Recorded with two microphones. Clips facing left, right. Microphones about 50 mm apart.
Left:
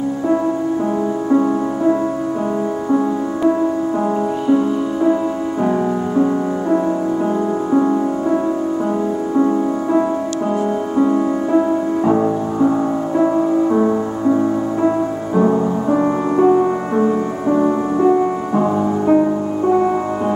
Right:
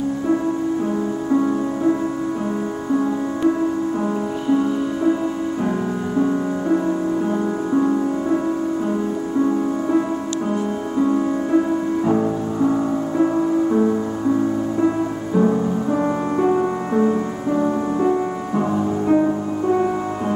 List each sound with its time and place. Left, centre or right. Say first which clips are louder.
11.5 s music: left 3 dB; left
17.9 s music: left 5 dB; centre